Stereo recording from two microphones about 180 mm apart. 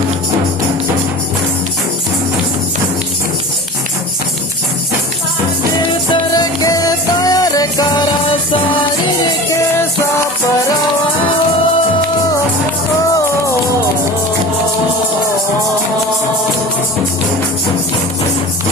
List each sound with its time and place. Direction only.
6.3 s music: 20° left (ahead or behind)